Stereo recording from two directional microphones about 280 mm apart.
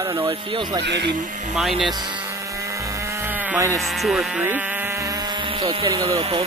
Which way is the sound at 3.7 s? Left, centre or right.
Centre.